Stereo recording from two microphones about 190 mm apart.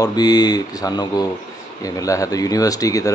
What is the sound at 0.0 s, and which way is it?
Speech, 20° left (ahead or behind).